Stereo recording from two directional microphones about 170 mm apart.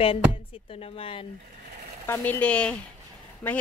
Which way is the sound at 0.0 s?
30° left (ahead or behind).